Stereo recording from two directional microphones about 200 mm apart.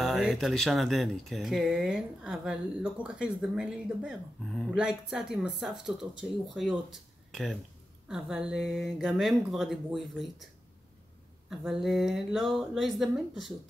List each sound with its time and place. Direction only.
0.0 s speech: centre (ahead or behind)
11.5 s speech: centre (ahead or behind)